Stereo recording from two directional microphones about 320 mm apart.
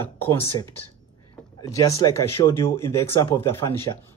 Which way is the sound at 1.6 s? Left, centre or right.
Centre.